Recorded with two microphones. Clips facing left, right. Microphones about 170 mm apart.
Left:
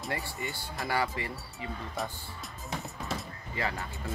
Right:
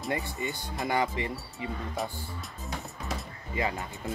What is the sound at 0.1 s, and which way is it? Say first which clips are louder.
Speech: right 4 dB; 20° right (ahead or behind).